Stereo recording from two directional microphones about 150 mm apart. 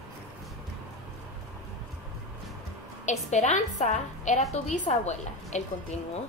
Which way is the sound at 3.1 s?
50° left (ahead or behind).